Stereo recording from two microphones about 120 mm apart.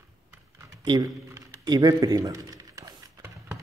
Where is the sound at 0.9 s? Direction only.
35° right (ahead or behind).